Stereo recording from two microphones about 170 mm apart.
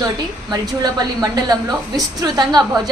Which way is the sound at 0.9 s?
25° right (ahead or behind).